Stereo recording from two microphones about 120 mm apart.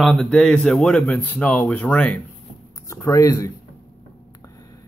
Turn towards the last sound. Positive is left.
turn(degrees=25)  # may be behind; listen again after turning